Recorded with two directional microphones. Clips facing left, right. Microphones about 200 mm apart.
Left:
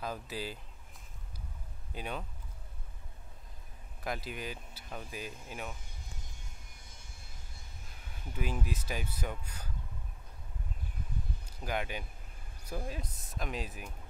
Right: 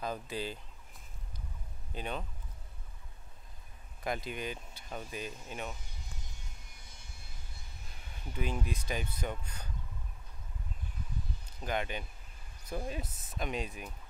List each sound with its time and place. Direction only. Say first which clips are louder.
0.0 s speech: right 2 dB; 5° left (ahead or behind)
2.0 s speech: right 1 dB; 10° left (ahead or behind)
4.0 s speech: right 2 dB; centre (ahead or behind)
5.9 s vehicle: even; 50° left (ahead or behind)
8.1 s speech: right 1 dB; 5° left (ahead or behind)
11.4 s speech: right 1 dB; 10° left (ahead or behind)